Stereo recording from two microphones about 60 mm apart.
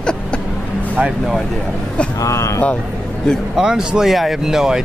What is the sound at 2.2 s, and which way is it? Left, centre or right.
Speech, left.